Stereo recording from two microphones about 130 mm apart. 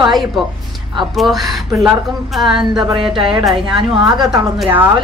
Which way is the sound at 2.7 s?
40° right (ahead or behind).